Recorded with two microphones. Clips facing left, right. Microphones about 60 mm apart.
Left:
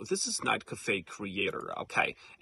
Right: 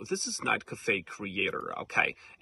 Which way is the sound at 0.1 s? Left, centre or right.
Right.